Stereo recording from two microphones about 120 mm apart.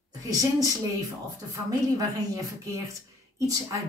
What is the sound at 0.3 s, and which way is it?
A woman's voice, 30° right (ahead or behind).